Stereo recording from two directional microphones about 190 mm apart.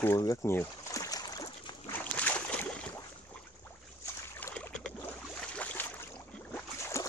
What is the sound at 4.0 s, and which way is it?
Boat, 10° left (ahead or behind).